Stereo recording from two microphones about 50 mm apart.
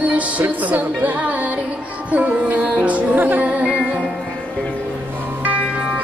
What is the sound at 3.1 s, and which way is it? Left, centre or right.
Music, right.